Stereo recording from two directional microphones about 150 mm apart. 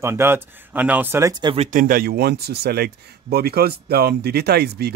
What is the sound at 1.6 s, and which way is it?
Speech, 60° right (ahead or behind).